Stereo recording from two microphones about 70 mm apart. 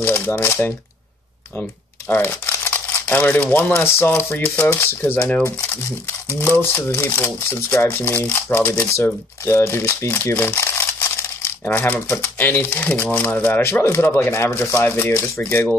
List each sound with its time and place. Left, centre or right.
0.0 s speech: left
2.0 s speech: left
2.7 s a sound: left
3.5 s speech: left
9.0 s speech: left